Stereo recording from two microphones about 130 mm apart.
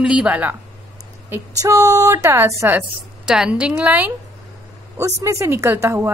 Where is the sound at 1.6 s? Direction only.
25° right (ahead or behind).